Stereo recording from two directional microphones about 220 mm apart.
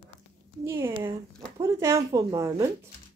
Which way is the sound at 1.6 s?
15° right (ahead or behind).